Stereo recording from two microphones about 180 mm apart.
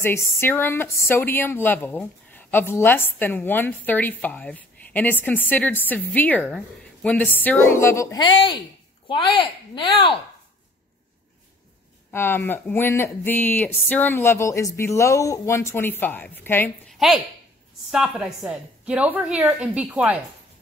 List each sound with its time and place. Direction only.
0.0 s a woman's voice: 15° left (ahead or behind); by 10.1 s 30° left (ahead or behind)
12.1 s a woman's voice: 10° left (ahead or behind)
16.9 s a sound: centre (ahead or behind)
17.9 s a woman's voice: 5° right (ahead or behind)